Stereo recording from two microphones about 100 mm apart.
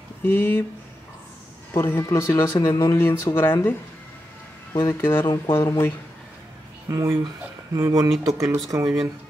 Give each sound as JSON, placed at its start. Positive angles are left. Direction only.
{"t": 0.2, "sound": "speech", "side_deg": 20}
{"t": 1.7, "sound": "speech", "side_deg": 30}
{"t": 4.7, "sound": "speech", "side_deg": 25}
{"t": 6.9, "sound": "speech", "side_deg": -35}